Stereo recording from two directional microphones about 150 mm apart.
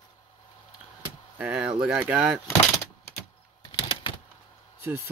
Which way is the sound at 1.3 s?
5° right (ahead or behind).